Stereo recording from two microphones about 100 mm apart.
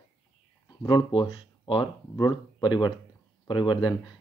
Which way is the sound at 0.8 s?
45° left (ahead or behind).